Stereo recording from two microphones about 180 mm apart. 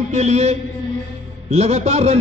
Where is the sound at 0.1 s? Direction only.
40° right (ahead or behind).